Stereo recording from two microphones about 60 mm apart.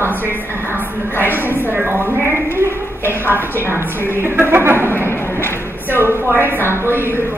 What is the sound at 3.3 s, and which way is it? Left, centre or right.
Speech, right.